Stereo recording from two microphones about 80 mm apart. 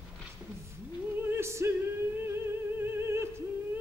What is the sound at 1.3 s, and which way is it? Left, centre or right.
Music, right.